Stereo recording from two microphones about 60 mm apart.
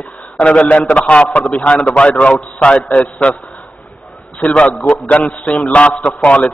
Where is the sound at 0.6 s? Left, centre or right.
Left.